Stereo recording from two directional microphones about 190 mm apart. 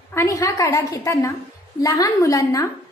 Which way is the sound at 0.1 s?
15° left (ahead or behind).